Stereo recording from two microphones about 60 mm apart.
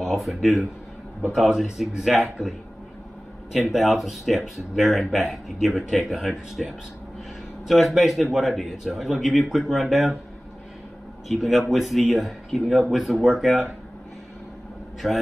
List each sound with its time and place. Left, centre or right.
0.0 s speech: centre
3.5 s speech: centre
11.2 s speech: centre
15.0 s speech: centre